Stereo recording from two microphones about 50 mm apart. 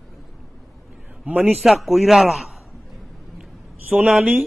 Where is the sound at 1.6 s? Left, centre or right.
Centre.